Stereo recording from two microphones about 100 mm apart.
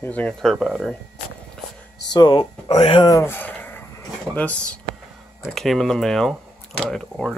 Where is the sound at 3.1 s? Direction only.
30° left (ahead or behind).